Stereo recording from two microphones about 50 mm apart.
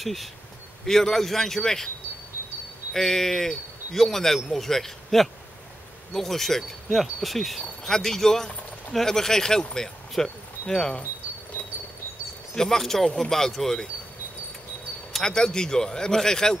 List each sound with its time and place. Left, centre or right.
0.0 s wind chime: centre
0.8 s speech: centre
2.9 s speech: centre
6.1 s wind chime: centre
8.9 s speech: centre
12.5 s speech: centre
15.1 s speech: centre